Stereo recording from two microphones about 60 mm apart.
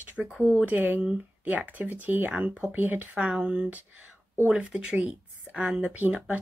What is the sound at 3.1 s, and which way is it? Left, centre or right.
Speech, centre.